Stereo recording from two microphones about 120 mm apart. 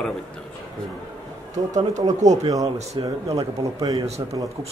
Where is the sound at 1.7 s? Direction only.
80° right.